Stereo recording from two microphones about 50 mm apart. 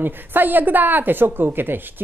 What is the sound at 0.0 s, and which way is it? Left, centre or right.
Speech, right.